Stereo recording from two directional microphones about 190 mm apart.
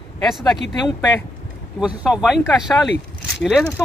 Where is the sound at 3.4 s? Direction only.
Centre (ahead or behind).